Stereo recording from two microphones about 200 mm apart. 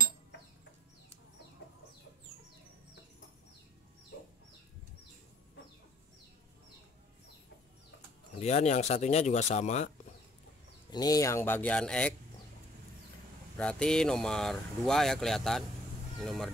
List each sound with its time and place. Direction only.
8.4 s speech: 35° left (ahead or behind)
10.9 s speech: 20° left (ahead or behind)
13.6 s speech: 5° left (ahead or behind)